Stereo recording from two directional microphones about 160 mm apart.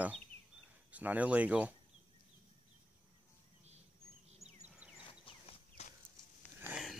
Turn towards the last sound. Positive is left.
turn(degrees=0)  # may be behind; listen again after turning